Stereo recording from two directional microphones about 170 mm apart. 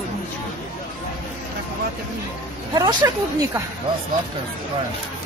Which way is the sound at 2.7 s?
20° right (ahead or behind).